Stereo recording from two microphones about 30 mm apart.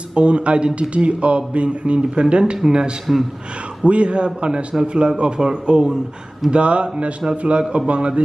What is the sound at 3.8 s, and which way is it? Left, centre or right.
Speech, right.